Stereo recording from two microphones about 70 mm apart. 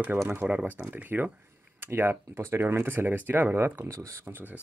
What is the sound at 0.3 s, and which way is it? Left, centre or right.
Speech, right.